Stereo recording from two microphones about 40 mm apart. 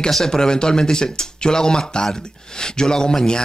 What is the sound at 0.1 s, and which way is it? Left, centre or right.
Speech, centre.